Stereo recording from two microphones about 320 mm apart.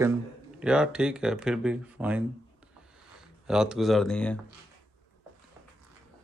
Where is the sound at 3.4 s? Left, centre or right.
Centre.